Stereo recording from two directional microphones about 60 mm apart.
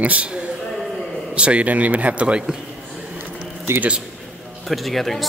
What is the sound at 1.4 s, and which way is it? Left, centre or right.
Speech, right.